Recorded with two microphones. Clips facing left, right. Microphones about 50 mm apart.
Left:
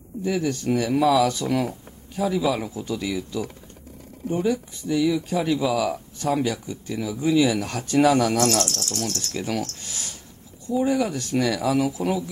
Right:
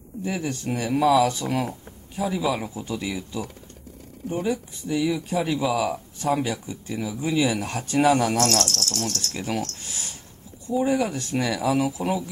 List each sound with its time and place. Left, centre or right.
0.2 s speech: right
0.9 s speech: centre
1.2 s speech: centre
2.7 s speech: right
8.4 s cricket: centre
8.9 s speech: centre
9.3 s speech: centre